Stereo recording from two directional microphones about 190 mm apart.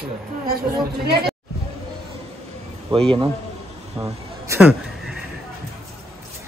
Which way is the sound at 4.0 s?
15° right (ahead or behind).